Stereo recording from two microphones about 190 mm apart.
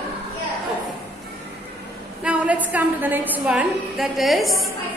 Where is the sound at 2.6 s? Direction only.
10° right (ahead or behind).